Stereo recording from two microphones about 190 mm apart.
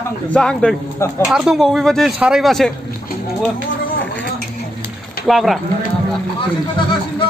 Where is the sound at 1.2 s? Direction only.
5° right (ahead or behind).